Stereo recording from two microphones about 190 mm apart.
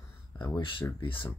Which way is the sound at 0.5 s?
25° left (ahead or behind).